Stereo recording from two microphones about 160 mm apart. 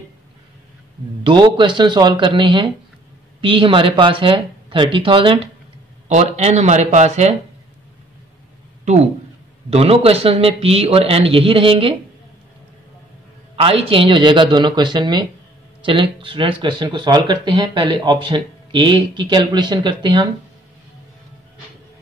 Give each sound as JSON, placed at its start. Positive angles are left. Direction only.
{"t": 1.2, "sound": "a man's voice", "side_deg": -30}
{"t": 6.0, "sound": "speech", "side_deg": -45}
{"t": 9.7, "sound": "a man's voice", "side_deg": -40}
{"t": 13.6, "sound": "speech", "side_deg": -35}